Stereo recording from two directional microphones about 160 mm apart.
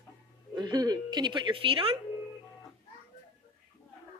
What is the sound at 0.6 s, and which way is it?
A woman's voice, 25° right (ahead or behind).